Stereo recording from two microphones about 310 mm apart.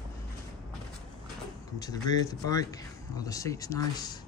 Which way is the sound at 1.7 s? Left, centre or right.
Centre.